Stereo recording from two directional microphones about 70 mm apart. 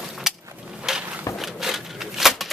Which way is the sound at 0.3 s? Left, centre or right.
Centre.